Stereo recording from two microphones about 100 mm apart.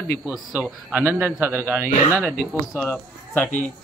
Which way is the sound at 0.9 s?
20° right (ahead or behind).